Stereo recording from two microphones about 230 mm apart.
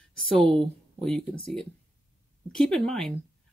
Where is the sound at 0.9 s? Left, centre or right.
Centre.